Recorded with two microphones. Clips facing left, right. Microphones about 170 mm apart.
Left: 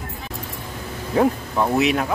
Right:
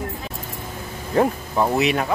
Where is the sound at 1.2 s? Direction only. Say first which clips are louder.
Left 2 dB; 5° right (ahead or behind).